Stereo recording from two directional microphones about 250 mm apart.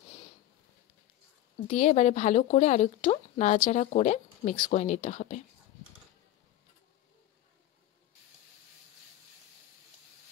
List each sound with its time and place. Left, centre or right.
1.7 s speech: left